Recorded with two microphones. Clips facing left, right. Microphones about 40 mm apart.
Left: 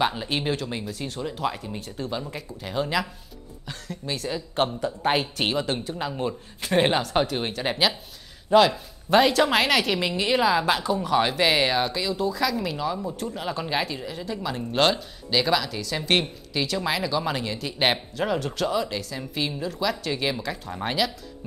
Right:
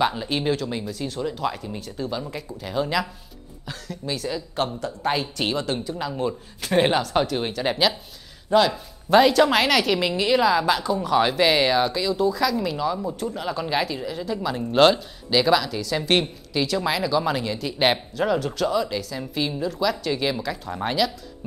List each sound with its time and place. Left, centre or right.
0.0 s speech: centre